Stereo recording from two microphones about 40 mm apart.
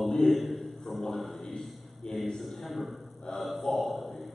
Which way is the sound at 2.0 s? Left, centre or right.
Left.